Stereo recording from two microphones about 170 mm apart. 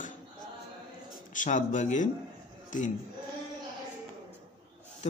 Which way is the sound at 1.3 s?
50° left (ahead or behind).